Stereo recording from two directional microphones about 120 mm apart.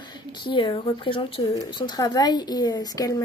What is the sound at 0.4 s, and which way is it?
A woman's voice, 40° left (ahead or behind).